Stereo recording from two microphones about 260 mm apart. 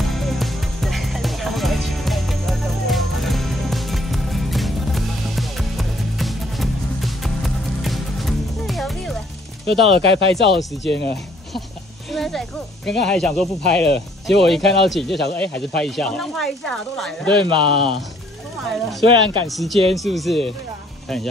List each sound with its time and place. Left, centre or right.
0.0 s music: centre
9.7 s speech: right
10.8 s speech: left
12.1 s a sound: centre
13.0 s speech: centre
17.4 s speech: centre
19.0 s speech: centre
19.4 s speech: centre